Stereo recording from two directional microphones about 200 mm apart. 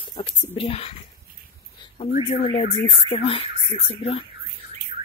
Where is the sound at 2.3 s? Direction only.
30° left (ahead or behind).